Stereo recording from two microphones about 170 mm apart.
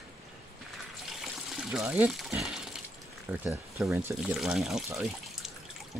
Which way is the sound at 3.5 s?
15° right (ahead or behind).